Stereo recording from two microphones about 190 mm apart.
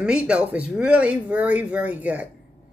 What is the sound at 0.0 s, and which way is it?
Speech, 5° right (ahead or behind).